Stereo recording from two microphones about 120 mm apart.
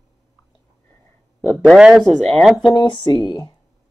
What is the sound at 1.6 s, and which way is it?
A man's voice, 5° right (ahead or behind).